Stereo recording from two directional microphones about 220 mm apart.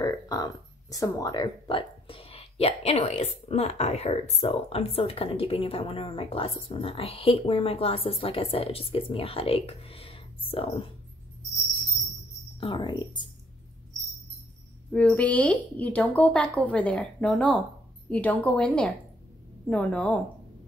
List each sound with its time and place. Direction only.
0.0 s speech: 15° left (ahead or behind)
12.5 s speech: 20° left (ahead or behind)
14.9 s speech: 5° left (ahead or behind)